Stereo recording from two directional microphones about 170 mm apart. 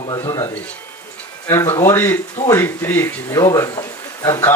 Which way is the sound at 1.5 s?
15° left (ahead or behind).